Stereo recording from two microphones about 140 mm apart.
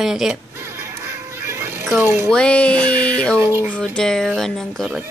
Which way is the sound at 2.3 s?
5° left (ahead or behind).